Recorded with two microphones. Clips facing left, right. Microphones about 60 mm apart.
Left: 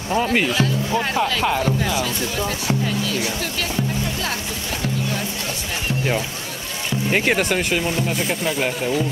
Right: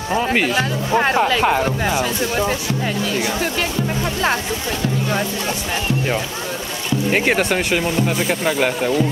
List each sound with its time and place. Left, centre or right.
0.1 s speech: right
0.6 s speech: right
1.1 s speech: right
7.1 s speech: centre
7.5 s speech: centre
8.1 s speech: centre
8.5 s speech: right